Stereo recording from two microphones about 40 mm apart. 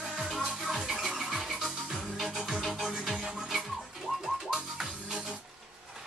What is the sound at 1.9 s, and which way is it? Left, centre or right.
Music, right.